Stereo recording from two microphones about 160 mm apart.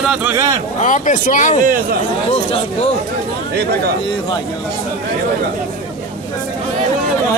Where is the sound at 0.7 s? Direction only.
50° left (ahead or behind).